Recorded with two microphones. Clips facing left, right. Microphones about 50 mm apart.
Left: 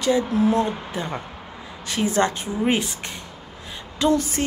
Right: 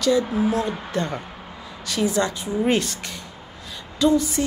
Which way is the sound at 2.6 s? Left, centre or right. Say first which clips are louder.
Even; centre.